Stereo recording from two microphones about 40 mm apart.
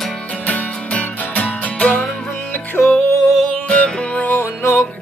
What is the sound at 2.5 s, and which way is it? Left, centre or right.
Music, left.